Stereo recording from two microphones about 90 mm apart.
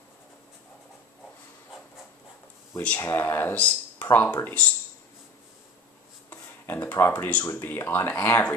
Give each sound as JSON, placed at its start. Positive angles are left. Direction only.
{"t": 3.0, "sound": "speech", "side_deg": 30}
{"t": 6.3, "sound": "a sound", "side_deg": 25}
{"t": 7.0, "sound": "speech", "side_deg": 20}